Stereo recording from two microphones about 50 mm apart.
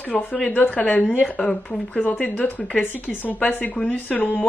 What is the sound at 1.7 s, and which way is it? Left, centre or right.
A woman's voice, left.